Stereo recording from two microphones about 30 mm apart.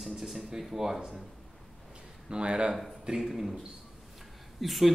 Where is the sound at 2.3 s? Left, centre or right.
Right.